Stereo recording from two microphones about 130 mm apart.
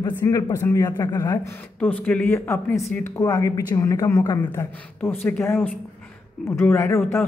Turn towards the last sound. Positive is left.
turn(degrees=20)  # may be behind; listen again after turning